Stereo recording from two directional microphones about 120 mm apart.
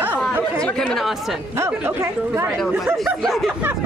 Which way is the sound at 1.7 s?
15° right (ahead or behind).